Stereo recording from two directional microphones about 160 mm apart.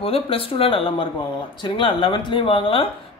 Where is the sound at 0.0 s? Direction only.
35° left (ahead or behind).